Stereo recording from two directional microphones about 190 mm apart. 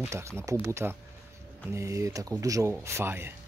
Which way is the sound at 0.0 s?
15° right (ahead or behind).